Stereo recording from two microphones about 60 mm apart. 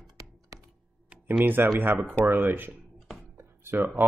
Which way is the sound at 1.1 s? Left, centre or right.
Right.